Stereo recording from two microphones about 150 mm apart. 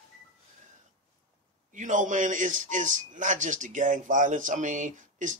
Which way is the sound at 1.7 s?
55° right (ahead or behind).